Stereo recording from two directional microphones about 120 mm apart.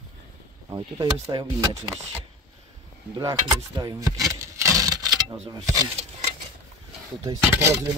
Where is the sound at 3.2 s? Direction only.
35° right (ahead or behind).